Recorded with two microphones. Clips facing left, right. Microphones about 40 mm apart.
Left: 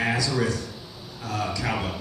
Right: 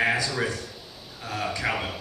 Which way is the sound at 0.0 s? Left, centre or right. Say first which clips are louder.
Even; right.